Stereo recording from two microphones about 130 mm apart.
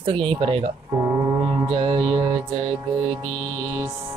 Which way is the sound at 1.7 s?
40° right (ahead or behind).